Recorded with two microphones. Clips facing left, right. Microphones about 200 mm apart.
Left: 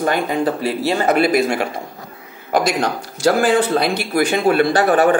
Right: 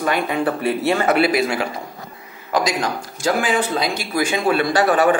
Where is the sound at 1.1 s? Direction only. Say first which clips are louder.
Left 2 dB; 45° left (ahead or behind).